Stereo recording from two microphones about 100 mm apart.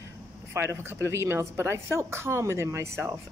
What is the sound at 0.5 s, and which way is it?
Speech, 25° right (ahead or behind).